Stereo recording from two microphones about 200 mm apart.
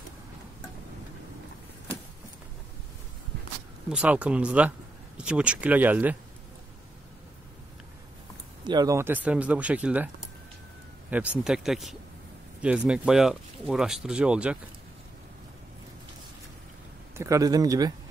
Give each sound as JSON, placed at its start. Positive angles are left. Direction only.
{"t": 3.9, "sound": "speech", "side_deg": -5}
{"t": 8.6, "sound": "speech", "side_deg": -20}
{"t": 17.2, "sound": "speech", "side_deg": -15}